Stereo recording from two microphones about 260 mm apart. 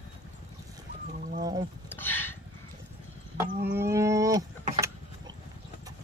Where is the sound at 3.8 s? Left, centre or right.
Centre.